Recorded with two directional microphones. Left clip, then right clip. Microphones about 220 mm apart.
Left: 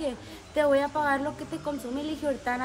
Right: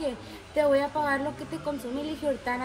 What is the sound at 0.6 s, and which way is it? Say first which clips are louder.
A woman's voice: even; 5° left (ahead or behind).